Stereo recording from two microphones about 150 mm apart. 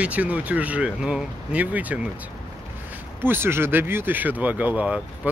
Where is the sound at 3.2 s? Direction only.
15° right (ahead or behind).